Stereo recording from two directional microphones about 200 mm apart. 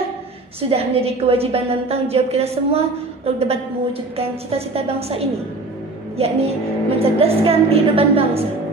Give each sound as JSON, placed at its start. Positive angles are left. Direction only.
{"t": 0.6, "sound": "a woman's voice", "side_deg": -30}
{"t": 6.1, "sound": "music", "side_deg": -30}
{"t": 7.0, "sound": "a woman's voice", "side_deg": -30}